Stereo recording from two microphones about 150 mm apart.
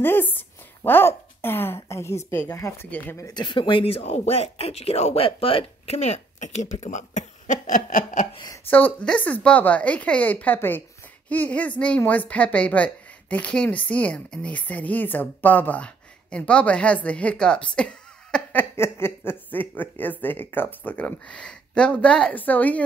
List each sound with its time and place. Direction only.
0.0 s a woman's voice: 15° left (ahead or behind); by 8.3 s 60° left (ahead or behind)
8.6 s a woman's voice: 10° left (ahead or behind)